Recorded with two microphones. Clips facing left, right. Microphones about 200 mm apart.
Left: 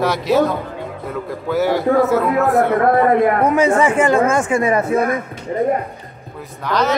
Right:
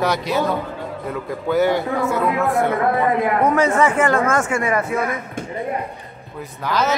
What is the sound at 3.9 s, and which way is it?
Speech, 15° left (ahead or behind).